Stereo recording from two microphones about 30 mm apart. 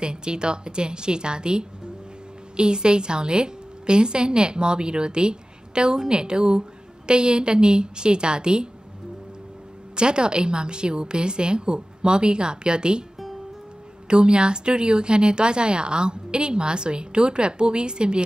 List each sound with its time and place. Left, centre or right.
0.0 s a woman's voice: right
9.9 s a woman's voice: right
14.0 s a woman's voice: right